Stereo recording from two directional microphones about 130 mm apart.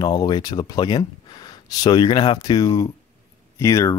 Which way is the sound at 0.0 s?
35° left (ahead or behind).